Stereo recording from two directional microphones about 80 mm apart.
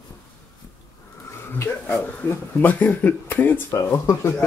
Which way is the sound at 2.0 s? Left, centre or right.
Left.